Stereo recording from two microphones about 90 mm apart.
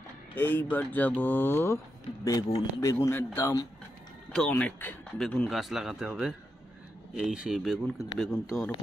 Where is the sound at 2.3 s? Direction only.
40° left (ahead or behind); by 3.6 s 25° left (ahead or behind).